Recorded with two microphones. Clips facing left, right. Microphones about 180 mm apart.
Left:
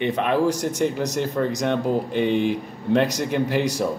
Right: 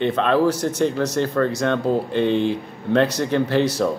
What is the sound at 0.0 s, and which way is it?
Speech, 15° left (ahead or behind).